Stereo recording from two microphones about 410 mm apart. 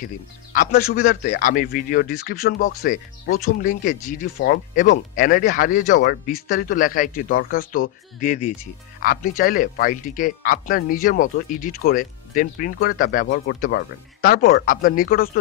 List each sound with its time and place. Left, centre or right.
1.2 s speech: centre